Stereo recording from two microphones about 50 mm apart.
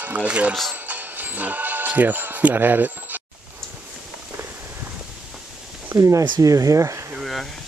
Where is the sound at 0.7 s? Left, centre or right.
Right.